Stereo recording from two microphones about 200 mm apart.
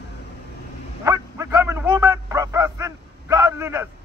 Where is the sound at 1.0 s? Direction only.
15° right (ahead or behind).